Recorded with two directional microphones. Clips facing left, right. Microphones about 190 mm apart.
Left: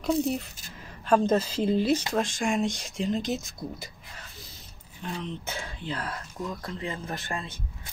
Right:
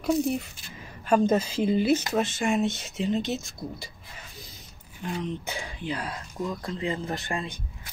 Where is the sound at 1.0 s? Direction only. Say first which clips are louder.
Right 1 dB; 10° right (ahead or behind).